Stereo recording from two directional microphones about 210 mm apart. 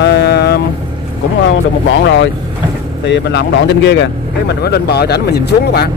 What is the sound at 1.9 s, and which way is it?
Speech, 60° left (ahead or behind).